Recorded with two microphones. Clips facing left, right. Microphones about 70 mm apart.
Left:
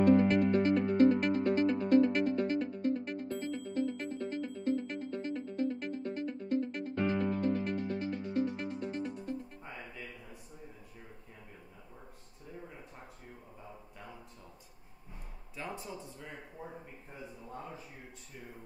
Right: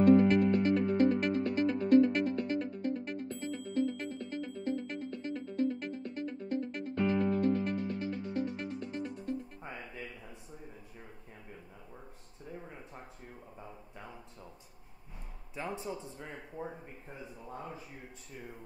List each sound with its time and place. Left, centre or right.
0.2 s music: centre
15.5 s speech: right